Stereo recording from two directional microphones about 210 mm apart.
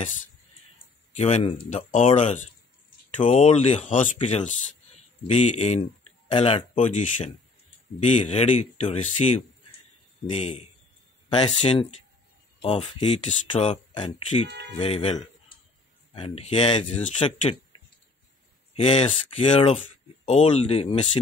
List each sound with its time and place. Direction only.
1.1 s speech: 30° left (ahead or behind)
18.8 s speech: 30° left (ahead or behind)